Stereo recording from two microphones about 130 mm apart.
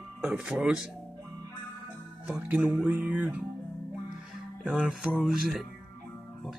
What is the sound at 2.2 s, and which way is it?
Speech, 10° right (ahead or behind).